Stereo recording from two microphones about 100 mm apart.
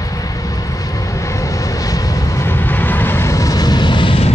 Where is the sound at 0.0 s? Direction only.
35° left (ahead or behind).